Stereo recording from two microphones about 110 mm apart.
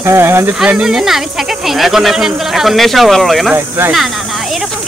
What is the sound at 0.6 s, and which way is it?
Speech, 5° right (ahead or behind).